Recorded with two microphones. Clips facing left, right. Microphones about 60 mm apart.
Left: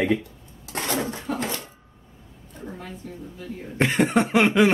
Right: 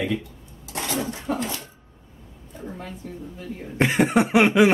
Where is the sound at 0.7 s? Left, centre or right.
Left.